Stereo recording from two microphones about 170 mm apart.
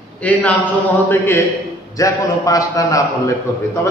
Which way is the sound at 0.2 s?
10° left (ahead or behind).